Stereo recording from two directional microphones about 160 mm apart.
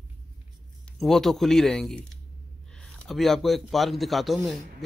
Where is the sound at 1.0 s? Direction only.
Centre (ahead or behind).